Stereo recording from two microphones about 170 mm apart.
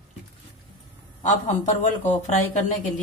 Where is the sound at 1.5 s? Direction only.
45° left (ahead or behind).